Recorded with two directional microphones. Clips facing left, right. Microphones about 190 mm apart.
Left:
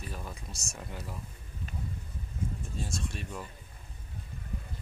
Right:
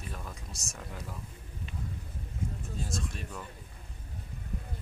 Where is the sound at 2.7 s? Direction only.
Centre (ahead or behind).